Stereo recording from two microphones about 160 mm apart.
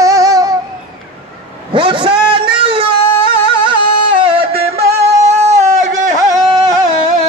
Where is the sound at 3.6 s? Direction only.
30° right (ahead or behind).